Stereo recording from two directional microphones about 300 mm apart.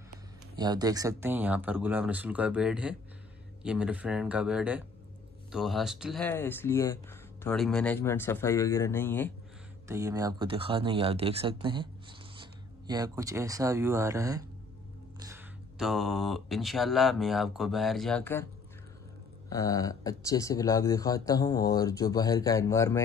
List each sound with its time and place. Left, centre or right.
0.6 s speech: centre
9.8 s speech: centre
19.5 s speech: centre